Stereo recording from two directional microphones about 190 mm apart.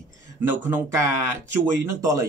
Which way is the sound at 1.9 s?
15° right (ahead or behind).